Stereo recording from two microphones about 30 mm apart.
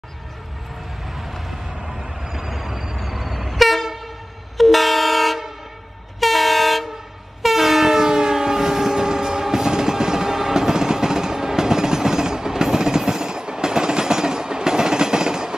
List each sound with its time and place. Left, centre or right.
1.9 s train: centre